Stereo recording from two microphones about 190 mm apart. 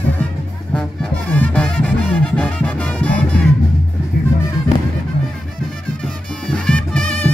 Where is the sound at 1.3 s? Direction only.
10° left (ahead or behind).